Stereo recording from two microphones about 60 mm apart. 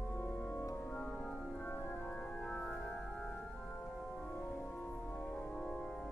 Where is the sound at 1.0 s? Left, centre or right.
Centre.